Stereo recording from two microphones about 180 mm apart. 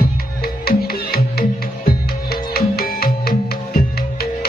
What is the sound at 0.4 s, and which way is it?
Music, 60° left (ahead or behind).